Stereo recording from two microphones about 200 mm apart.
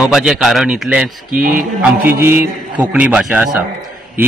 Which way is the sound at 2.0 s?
10° right (ahead or behind).